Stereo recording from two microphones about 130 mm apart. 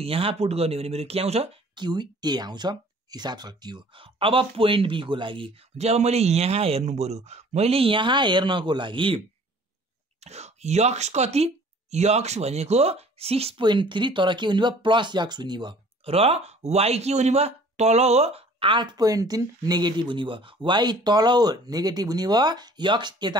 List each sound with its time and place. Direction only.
0.0 s speech: 45° right (ahead or behind)
1.8 s speech: 35° right (ahead or behind)
5.8 s speech: 55° right (ahead or behind)
10.2 s speech: 55° right (ahead or behind)
13.6 s speech: 35° right (ahead or behind)
16.0 s speech: 50° right (ahead or behind); by 23.3 s 35° right (ahead or behind)